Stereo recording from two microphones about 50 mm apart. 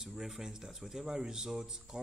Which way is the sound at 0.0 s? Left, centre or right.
Centre.